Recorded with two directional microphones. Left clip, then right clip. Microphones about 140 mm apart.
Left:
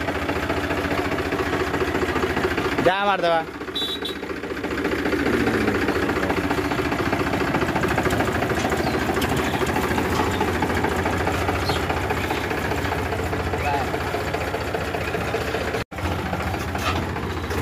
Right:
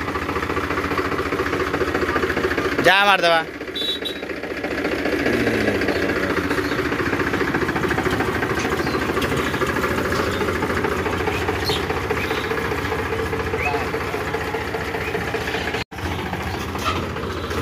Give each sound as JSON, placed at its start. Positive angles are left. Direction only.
{"t": 2.8, "sound": "speech", "side_deg": 10}